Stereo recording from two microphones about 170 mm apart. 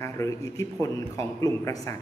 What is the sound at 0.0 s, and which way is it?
A man's voice, 20° left (ahead or behind).